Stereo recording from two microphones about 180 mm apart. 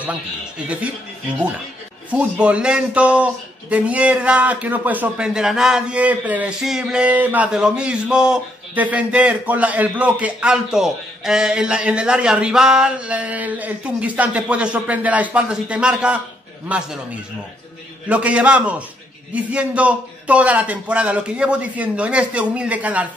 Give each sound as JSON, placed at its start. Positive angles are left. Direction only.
{"t": 2.0, "sound": "a man's voice", "side_deg": -5}